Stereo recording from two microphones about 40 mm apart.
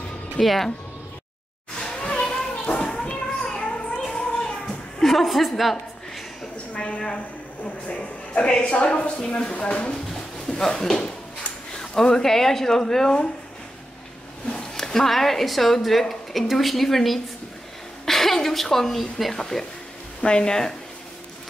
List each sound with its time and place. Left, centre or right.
0.4 s speech: centre
1.8 s children playing: left
5.0 s a woman's voice: centre
5.6 s a sound: centre
6.7 s a woman's voice: left
14.5 s speech: centre
19.3 s a woman's voice: centre